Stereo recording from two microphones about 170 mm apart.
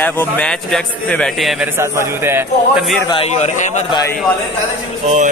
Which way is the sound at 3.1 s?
40° left (ahead or behind).